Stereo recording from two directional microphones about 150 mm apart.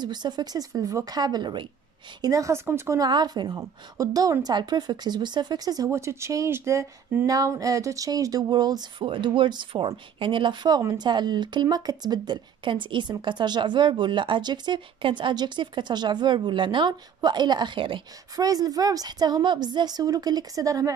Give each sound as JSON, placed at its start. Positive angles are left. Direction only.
{"t": 0.0, "sound": "speech", "side_deg": -30}